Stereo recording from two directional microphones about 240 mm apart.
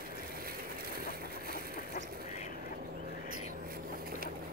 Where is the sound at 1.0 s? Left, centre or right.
Right.